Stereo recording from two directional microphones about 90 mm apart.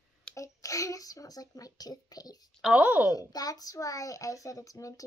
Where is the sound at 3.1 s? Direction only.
45° left (ahead or behind).